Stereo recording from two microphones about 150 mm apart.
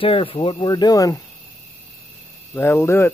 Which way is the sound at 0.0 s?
35° left (ahead or behind).